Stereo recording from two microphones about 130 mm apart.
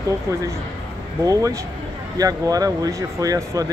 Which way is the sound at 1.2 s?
25° right (ahead or behind).